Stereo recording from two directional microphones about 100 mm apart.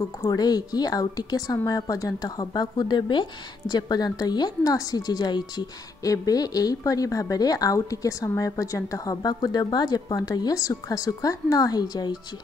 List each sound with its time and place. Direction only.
0.2 s speech: 40° left (ahead or behind)